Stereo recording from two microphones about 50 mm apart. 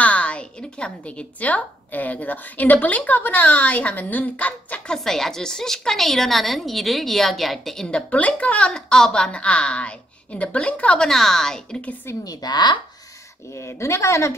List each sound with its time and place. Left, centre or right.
0.0 s a woman's voice: left
4.8 s a woman's voice: centre
8.1 s a woman's voice: left
8.7 s a woman's voice: centre
11.0 s a woman's voice: centre
12.1 s a woman's voice: left
13.5 s a woman's voice: left